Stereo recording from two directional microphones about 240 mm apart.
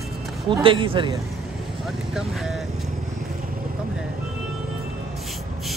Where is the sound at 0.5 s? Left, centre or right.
Right.